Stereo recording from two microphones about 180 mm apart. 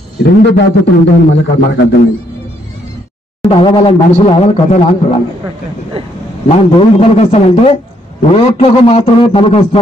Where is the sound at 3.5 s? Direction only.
30° left (ahead or behind).